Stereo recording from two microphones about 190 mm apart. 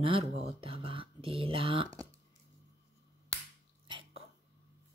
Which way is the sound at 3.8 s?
25° right (ahead or behind).